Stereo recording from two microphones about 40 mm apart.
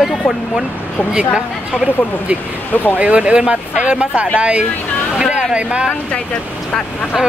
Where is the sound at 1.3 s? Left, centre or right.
Right.